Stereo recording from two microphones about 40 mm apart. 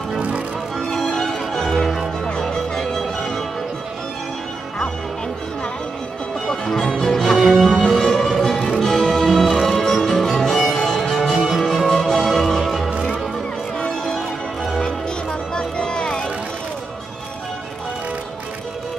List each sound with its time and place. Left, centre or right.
0.7 s music: centre
2.5 s music: centre
6.4 s music: centre
12.9 s music: right
14.0 s music: centre